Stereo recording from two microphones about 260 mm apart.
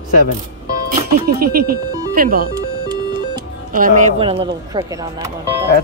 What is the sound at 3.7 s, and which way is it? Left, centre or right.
Speech, right.